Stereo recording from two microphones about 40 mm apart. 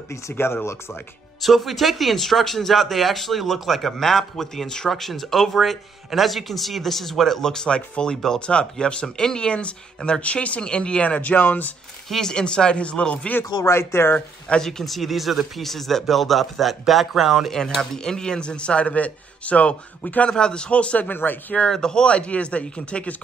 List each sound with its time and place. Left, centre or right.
0.3 s speech: left
1.4 s a man's voice: centre
10.2 s speech: left
10.6 s speech: left
12.1 s a man's voice: centre
13.4 s speech: left
14.6 s speech: centre
17.5 s a man's voice: centre; by 20.2 s left
20.2 s a man's voice: left
21.1 s speech: left
21.6 s a man's voice: centre
22.1 s speech: left